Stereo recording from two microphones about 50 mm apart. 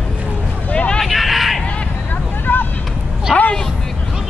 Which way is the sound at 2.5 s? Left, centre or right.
Left.